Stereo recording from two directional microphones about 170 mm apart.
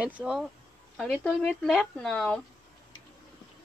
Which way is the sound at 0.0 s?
5° right (ahead or behind).